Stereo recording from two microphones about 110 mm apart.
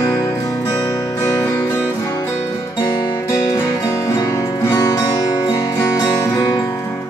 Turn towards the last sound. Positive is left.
turn(degrees=30)  # may be behind; listen again after turning